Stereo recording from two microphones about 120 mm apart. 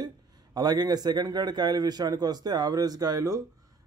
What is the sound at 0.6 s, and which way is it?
A man's voice, 35° right (ahead or behind).